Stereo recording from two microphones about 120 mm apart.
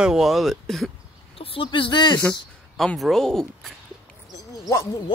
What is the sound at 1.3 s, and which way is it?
Speech, 50° left (ahead or behind).